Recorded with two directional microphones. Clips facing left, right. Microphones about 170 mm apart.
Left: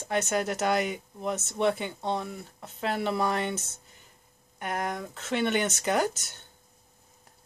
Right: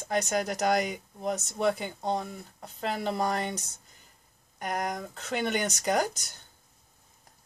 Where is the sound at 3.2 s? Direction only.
40° right (ahead or behind).